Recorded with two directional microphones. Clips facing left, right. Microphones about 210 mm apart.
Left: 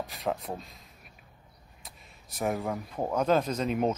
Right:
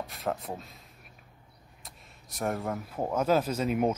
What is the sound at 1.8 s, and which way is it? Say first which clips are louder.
Speech: even; centre (ahead or behind).